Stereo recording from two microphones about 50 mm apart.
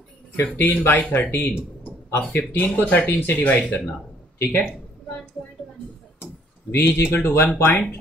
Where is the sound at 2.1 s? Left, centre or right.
Left.